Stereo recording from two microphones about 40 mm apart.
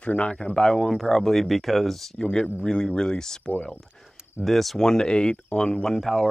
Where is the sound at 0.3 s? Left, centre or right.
Left.